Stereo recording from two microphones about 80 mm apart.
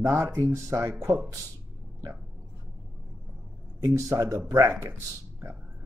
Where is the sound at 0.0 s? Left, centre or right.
Right.